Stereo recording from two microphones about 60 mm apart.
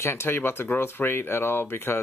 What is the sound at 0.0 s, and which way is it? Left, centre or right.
Speech, left.